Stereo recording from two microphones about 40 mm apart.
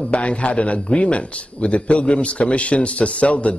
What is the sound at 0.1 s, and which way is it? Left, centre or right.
A man's voice, left.